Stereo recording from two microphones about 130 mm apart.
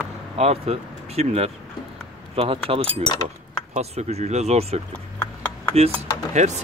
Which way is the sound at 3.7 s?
55° right (ahead or behind).